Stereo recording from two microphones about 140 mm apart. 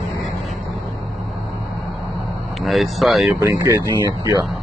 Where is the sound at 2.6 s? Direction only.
Centre (ahead or behind).